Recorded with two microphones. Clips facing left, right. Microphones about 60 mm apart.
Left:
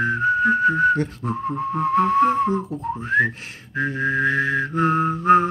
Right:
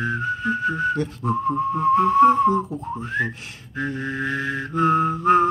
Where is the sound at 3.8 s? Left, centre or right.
Left.